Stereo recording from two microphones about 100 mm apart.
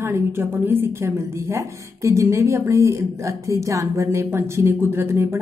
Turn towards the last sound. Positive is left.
turn(degrees=-25)  # may be behind; listen again after turning